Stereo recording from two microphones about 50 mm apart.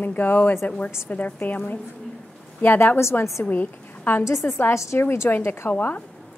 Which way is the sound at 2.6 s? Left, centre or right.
Left.